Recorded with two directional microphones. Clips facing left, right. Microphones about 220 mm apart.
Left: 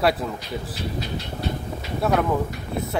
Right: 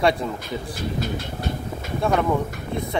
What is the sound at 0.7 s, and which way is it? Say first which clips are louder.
Speech: right 2 dB; 50° right (ahead or behind).